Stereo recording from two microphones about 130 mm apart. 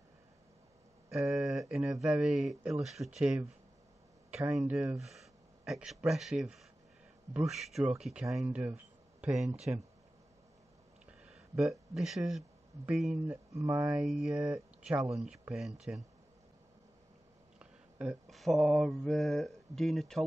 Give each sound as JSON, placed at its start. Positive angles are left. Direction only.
{"t": 1.3, "sound": "speech", "side_deg": 0}
{"t": 11.1, "sound": "a sound", "side_deg": -5}
{"t": 13.3, "sound": "speech", "side_deg": -20}
{"t": 13.9, "sound": "speech", "side_deg": -5}
{"t": 17.6, "sound": "mantra", "side_deg": -5}